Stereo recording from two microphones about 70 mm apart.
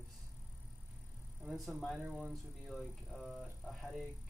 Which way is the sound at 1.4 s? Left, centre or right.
Centre.